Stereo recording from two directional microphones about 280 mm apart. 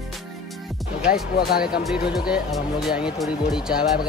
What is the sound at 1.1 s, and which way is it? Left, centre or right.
Speech, left.